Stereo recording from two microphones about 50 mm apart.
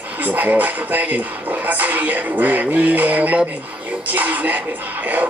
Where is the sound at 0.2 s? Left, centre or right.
Right.